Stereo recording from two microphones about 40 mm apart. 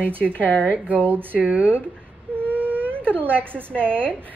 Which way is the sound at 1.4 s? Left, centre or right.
Right.